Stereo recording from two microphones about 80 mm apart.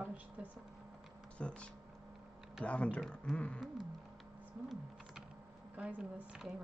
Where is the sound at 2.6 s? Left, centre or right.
Centre.